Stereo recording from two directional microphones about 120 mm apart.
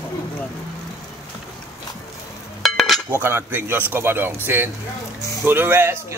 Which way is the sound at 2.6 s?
Centre (ahead or behind).